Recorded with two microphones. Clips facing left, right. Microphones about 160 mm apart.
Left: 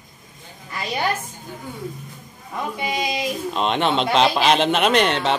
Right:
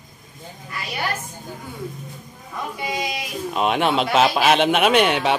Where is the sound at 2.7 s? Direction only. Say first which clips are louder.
Left 2 dB; 20° left (ahead or behind).